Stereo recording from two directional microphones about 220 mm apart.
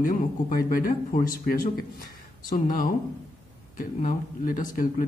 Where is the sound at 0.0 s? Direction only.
40° left (ahead or behind).